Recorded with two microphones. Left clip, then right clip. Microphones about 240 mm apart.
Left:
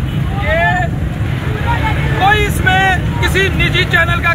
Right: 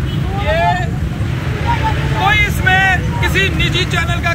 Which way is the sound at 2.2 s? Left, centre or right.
Left.